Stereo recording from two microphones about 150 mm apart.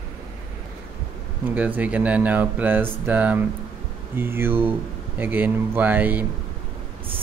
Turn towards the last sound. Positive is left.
turn(degrees=-10)  # may be behind; listen again after turning